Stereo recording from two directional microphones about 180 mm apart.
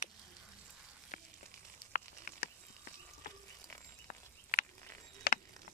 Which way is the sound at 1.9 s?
50° left (ahead or behind).